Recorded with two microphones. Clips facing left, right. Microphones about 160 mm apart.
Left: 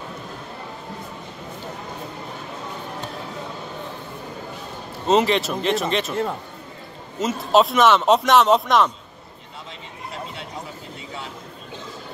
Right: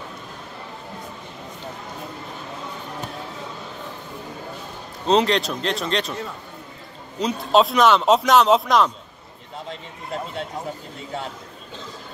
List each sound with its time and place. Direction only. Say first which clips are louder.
5.0 s speech: even; 5° left (ahead or behind)
7.2 s speech: even; centre (ahead or behind)
9.7 s speech: right 5 dB; 45° right (ahead or behind)